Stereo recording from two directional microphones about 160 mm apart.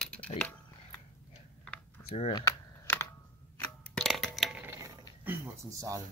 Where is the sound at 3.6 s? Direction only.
Centre (ahead or behind).